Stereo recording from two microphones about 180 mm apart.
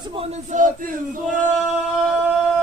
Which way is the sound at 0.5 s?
45° right (ahead or behind).